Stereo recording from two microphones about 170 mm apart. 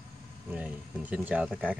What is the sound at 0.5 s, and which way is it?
A man's voice, 10° right (ahead or behind).